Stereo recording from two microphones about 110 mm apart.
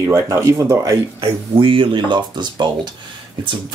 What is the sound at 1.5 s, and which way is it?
Speech, 50° right (ahead or behind).